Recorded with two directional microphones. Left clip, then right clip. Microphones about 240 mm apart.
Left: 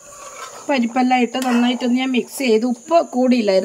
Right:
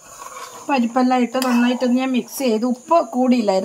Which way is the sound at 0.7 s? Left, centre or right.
Left.